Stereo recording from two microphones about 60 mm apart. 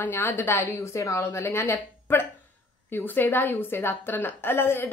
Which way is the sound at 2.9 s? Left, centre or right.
Left.